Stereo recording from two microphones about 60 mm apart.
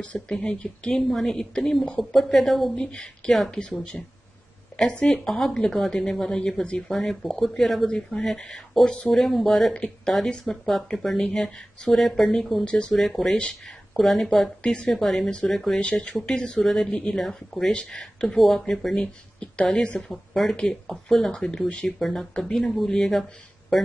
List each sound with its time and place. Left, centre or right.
0.0 s speech: centre
2.7 s speech: centre
3.9 s speech: left
4.7 s speech: centre
7.9 s speech: centre
9.1 s speech: centre
14.6 s speech: centre
21.8 s speech: centre